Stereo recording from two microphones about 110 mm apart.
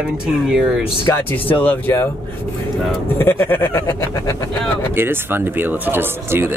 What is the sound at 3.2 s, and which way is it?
Speech, 20° left (ahead or behind).